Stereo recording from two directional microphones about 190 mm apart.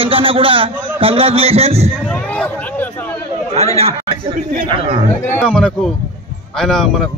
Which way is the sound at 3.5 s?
35° right (ahead or behind).